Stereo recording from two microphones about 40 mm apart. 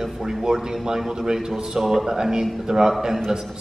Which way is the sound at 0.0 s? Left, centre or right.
Centre.